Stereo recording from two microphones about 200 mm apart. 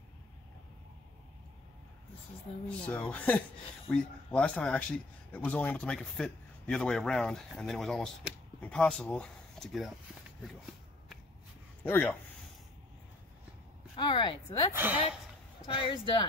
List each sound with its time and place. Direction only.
2.9 s a man's voice: 5° left (ahead or behind)
11.8 s speech: 10° left (ahead or behind)
13.9 s speech: 25° left (ahead or behind)
14.7 s speech: 10° right (ahead or behind)
15.6 s speech: 25° left (ahead or behind)